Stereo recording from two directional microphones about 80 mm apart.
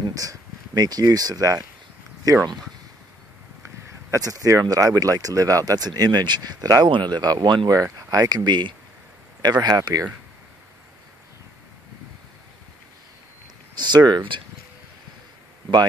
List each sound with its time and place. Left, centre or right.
0.1 s speech: right
3.6 s speech: right
5.9 s speech: right
6.9 s speech: right
8.5 s speech: right
9.4 s speech: right
13.7 s speech: right